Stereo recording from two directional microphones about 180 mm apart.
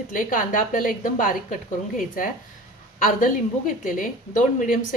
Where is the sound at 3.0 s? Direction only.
50° left (ahead or behind).